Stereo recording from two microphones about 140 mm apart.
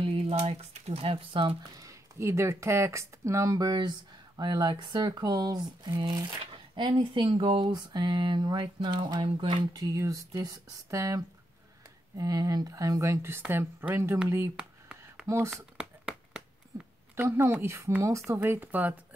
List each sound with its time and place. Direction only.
0.0 s speech: 45° right (ahead or behind)
1.8 s speech: 20° right (ahead or behind); by 9.6 s 40° right (ahead or behind)
9.7 s speech: 25° right (ahead or behind)
14.6 s a sound: 5° right (ahead or behind)
15.2 s speech: 20° right (ahead or behind)
15.5 s a sound: 5° right (ahead or behind)
17.1 s a woman's voice: 20° right (ahead or behind)